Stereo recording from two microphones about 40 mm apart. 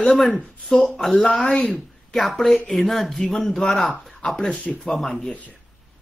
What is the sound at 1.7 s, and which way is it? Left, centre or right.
Speech, centre.